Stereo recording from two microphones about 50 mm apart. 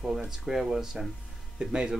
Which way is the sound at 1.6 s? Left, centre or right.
Centre.